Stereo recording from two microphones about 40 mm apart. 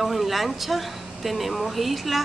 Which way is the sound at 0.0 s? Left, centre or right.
Centre.